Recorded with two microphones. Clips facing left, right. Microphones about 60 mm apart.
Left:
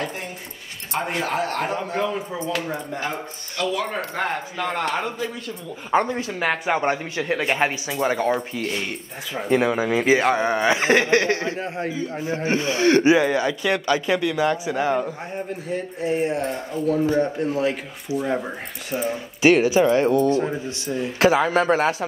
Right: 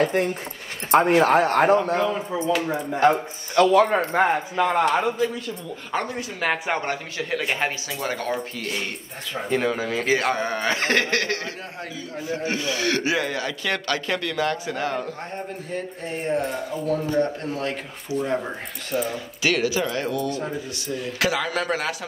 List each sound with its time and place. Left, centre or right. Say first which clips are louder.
0.0 s speech: right 8 dB; right
2.0 s speech: right 1 dB; centre
3.0 s speech: right 9 dB; right
4.2 s a man's voice: right 4 dB; centre
5.9 s speech: left 7 dB; left
6.4 s speech: left 1 dB; centre
6.8 s a man's voice: left 5 dB; left; by 18.9 s centre
18.9 s a man's voice: left 1 dB; left